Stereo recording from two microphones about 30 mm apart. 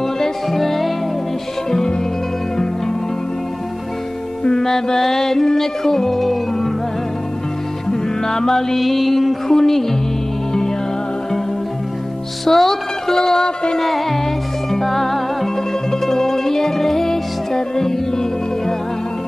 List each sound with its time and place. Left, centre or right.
0.5 s music: centre
4.5 s music: centre
7.9 s music: centre
8.7 s mantra: centre
9.5 s music: centre
12.4 s speech: centre
13.7 s music: centre